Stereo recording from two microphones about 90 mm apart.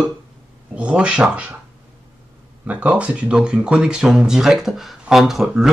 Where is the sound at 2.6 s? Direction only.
15° right (ahead or behind).